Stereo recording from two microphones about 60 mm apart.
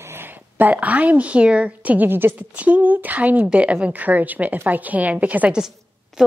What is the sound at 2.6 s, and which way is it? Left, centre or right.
A woman's voice, right.